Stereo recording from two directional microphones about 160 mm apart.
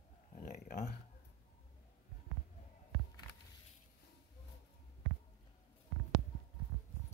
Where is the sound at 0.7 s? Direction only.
75° left (ahead or behind).